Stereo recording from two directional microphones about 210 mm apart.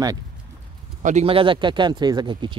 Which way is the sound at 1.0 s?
30° right (ahead or behind).